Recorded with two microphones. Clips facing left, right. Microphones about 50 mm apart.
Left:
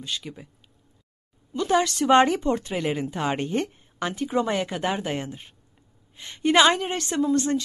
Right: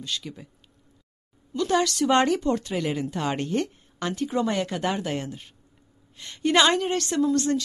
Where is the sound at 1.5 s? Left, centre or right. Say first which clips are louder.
Left 1 dB; left.